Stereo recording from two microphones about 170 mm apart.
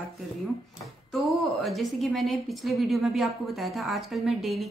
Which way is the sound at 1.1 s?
Centre (ahead or behind).